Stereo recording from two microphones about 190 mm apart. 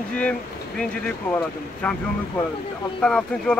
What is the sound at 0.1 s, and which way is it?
Speech, 5° left (ahead or behind).